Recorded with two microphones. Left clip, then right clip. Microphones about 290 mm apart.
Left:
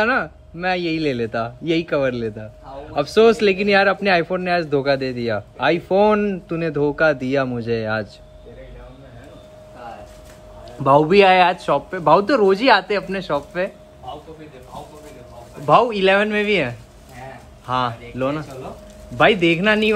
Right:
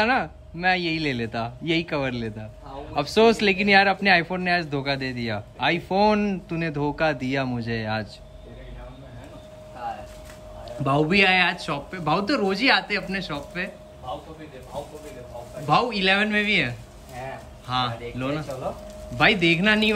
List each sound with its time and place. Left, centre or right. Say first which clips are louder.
0.0 s speech: left 3 dB; centre
10.8 s speech: left 7 dB; centre
15.6 s speech: left 7 dB; centre
18.1 s speech: left 5 dB; centre